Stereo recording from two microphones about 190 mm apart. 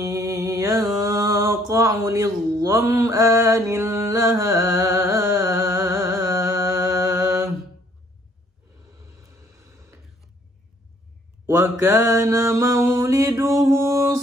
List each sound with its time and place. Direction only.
0.0 s mantra: 15° right (ahead or behind)
11.4 s mantra: 15° right (ahead or behind)